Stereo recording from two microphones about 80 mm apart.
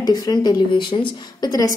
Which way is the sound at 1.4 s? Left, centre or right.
Left.